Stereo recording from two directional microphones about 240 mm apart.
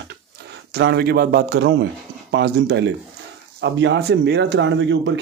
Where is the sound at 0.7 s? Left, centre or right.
Right.